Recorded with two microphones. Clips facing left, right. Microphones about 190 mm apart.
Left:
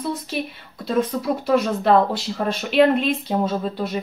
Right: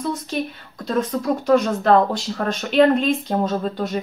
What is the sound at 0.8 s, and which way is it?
Speech, 5° left (ahead or behind).